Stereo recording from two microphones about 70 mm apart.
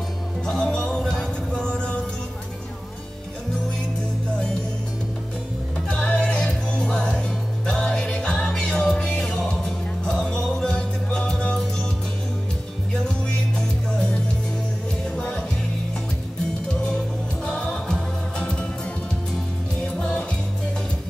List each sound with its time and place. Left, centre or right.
0.5 s music: centre
5.9 s music: centre
13.6 s music: centre
17.5 s music: centre
19.3 s music: centre